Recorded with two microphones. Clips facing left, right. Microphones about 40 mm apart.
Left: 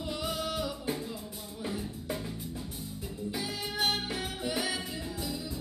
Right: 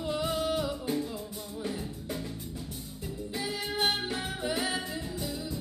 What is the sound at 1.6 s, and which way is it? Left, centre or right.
Music, centre.